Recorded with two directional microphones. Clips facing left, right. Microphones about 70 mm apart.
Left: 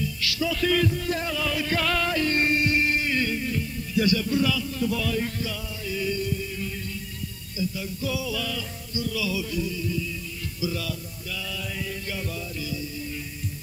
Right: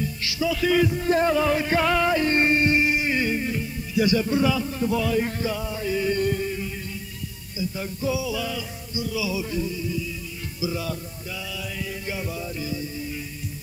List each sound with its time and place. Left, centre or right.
0.2 s a man's voice: right
0.9 s speech: right
2.9 s a sound: centre
3.9 s speech: right
6.1 s music: right
7.7 s music: right
8.1 s speech: centre
12.1 s speech: centre